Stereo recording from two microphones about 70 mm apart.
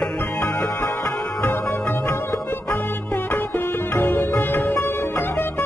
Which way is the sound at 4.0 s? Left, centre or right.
Left.